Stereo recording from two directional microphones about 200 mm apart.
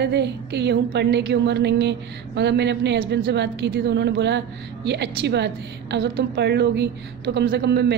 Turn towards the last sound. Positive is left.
turn(degrees=-60)  # may be behind; listen again after turning